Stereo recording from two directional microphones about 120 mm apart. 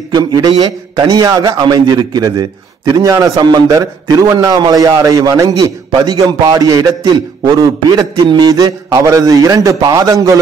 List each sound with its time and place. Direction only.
0.1 s a man's voice: 35° right (ahead or behind)